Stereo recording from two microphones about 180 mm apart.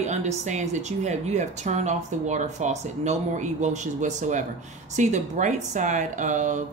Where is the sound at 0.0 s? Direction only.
40° right (ahead or behind).